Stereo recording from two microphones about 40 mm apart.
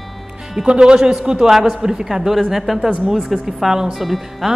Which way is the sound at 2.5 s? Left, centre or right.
Centre.